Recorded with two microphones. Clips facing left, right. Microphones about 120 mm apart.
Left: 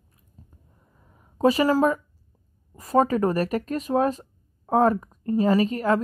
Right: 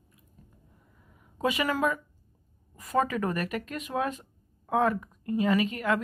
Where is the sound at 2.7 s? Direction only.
35° left (ahead or behind).